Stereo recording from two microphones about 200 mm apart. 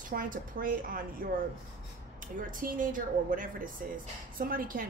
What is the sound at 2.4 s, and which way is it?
A woman's voice, 40° right (ahead or behind).